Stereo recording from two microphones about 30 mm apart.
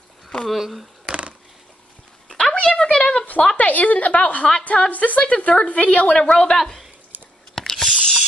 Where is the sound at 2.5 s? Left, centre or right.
Left.